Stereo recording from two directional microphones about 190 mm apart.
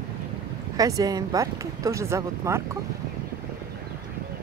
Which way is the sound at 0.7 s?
20° right (ahead or behind).